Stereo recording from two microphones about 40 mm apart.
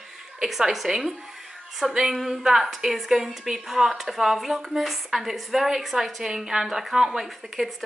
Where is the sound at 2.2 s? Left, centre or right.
Centre.